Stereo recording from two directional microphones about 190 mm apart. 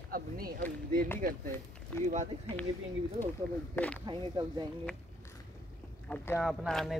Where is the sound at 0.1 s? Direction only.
50° right (ahead or behind).